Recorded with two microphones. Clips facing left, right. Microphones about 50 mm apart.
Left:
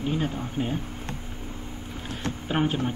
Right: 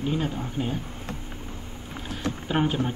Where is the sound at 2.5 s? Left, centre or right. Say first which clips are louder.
Even; centre.